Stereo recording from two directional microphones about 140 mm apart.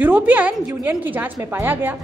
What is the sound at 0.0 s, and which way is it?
A woman's voice, 10° right (ahead or behind).